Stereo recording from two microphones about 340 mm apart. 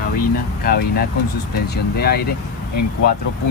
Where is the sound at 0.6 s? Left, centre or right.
Left.